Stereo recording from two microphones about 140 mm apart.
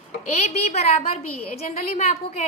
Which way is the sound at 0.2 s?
55° left (ahead or behind).